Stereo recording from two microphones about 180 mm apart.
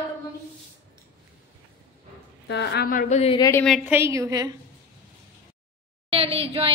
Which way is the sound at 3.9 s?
15° right (ahead or behind).